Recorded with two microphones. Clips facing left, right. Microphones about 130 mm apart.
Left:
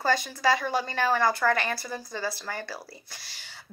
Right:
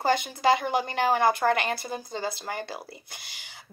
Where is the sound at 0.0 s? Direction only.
20° right (ahead or behind).